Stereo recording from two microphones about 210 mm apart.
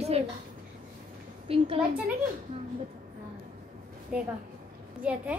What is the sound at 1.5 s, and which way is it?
Speech, 25° right (ahead or behind).